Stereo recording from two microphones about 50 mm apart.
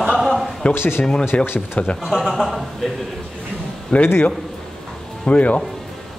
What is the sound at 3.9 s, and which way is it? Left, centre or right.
Speech, left.